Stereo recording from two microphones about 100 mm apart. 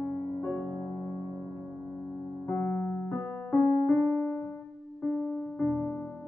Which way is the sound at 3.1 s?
15° left (ahead or behind).